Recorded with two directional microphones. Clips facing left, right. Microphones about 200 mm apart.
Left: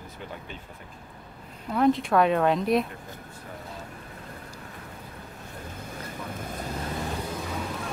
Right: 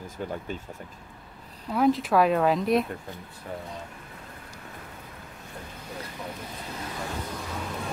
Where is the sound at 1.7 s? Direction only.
Centre (ahead or behind).